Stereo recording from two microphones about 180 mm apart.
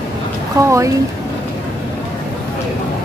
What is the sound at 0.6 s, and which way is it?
Speech, 20° right (ahead or behind).